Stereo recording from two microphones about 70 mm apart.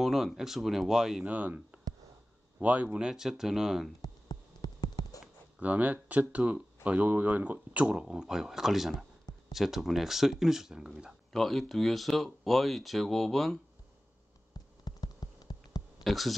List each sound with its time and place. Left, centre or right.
0.0 s speech: centre
1.2 s speech: right
4.0 s a sound: left
5.6 s speech: right
11.3 s speech: centre
14.5 s a sound: left
16.0 s speech: centre